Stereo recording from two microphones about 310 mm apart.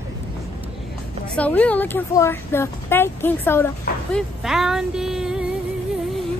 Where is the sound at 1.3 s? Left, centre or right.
Centre.